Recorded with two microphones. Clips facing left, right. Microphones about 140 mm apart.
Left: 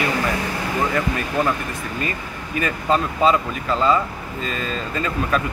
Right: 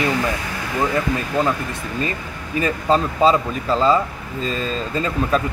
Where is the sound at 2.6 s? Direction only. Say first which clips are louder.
Right 2 dB; 30° right (ahead or behind).